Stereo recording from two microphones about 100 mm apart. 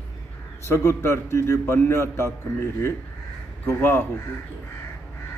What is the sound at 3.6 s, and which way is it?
Speech, 25° left (ahead or behind).